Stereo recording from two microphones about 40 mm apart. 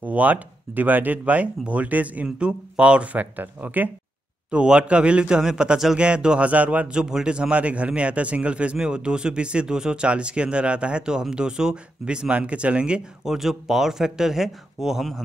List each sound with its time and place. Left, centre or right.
0.0 s speech: right
2.3 s speech: right
4.5 s speech: right
6.9 s speech: centre
7.2 s speech: right
13.2 s speech: centre